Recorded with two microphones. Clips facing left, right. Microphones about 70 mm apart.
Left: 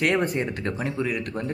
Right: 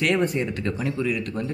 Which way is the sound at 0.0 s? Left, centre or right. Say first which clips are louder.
Right 1 dB; left.